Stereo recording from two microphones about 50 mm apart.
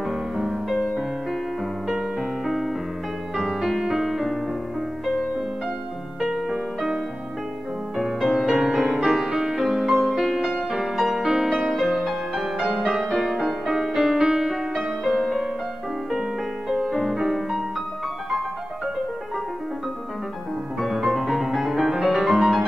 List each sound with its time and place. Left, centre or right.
0.1 s music: centre
6.2 s music: centre
8.0 s music: centre
16.2 s music: centre
20.8 s music: centre